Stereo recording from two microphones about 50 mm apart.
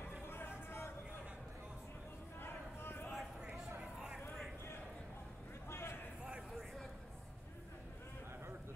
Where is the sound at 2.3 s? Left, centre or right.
Left.